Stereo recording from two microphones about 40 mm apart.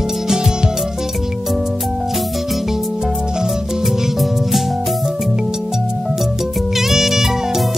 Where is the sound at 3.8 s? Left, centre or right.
Centre.